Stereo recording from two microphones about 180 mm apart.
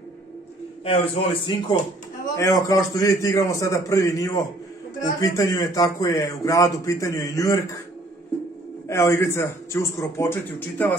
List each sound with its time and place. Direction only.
0.8 s speech: 30° left (ahead or behind)
2.3 s a man's voice: 20° left (ahead or behind)
8.8 s a man's voice: 15° left (ahead or behind)